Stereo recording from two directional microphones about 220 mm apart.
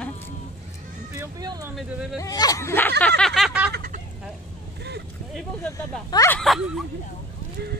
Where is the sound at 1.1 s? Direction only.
15° right (ahead or behind).